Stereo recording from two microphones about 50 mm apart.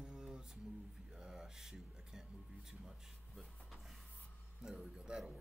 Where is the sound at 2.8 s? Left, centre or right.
Centre.